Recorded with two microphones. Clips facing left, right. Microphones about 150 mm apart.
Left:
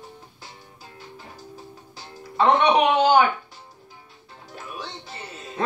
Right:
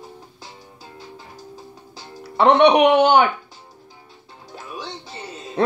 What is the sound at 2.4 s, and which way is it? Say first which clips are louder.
Speech: right 5 dB; 70° right (ahead or behind).